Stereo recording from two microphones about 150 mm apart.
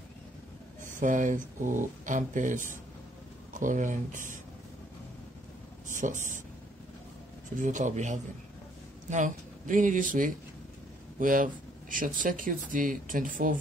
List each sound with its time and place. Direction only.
0.9 s speech: 60° right (ahead or behind)
5.9 s speech: 60° right (ahead or behind)
7.5 s speech: 55° right (ahead or behind)